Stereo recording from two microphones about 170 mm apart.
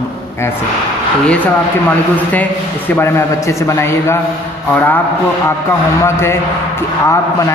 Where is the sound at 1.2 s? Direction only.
10° left (ahead or behind).